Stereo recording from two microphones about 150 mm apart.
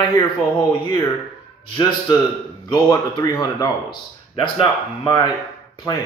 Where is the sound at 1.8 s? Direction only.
30° left (ahead or behind).